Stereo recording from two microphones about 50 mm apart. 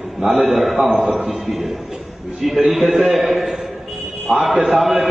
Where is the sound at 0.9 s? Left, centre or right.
Right.